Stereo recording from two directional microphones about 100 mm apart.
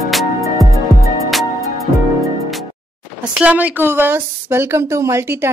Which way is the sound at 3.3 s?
15° right (ahead or behind).